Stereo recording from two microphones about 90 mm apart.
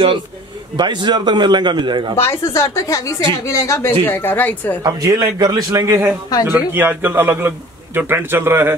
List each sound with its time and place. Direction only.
0.7 s a man's voice: 55° right (ahead or behind)
2.1 s a woman's voice: 30° left (ahead or behind)
4.8 s a man's voice: 45° right (ahead or behind)
6.4 s a man's voice: 25° right (ahead or behind)